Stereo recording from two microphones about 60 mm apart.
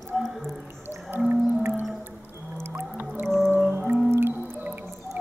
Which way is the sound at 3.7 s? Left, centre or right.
Right.